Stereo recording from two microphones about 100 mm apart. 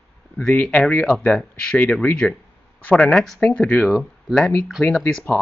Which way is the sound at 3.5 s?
15° left (ahead or behind).